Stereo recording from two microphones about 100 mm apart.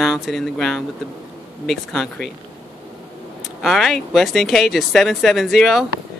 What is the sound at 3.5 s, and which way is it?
Speech, centre (ahead or behind).